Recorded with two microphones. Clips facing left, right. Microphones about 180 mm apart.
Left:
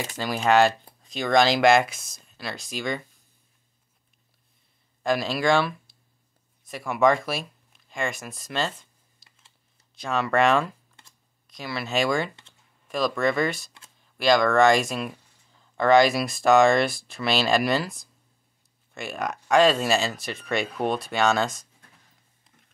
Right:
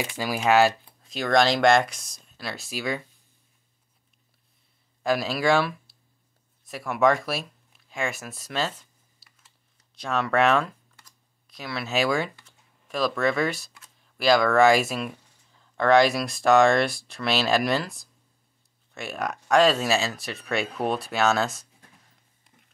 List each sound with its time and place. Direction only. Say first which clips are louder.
0.0 s speech: even; 10° right (ahead or behind)
5.0 s speech: even; 5° right (ahead or behind)
9.9 s speech: even; centre (ahead or behind)